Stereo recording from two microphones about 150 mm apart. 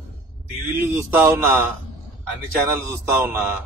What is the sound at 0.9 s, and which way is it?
Speech, 20° right (ahead or behind).